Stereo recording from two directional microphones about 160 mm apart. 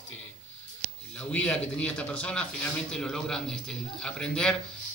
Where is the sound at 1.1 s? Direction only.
5° left (ahead or behind).